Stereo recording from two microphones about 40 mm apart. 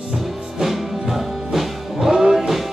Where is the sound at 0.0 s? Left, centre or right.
Centre.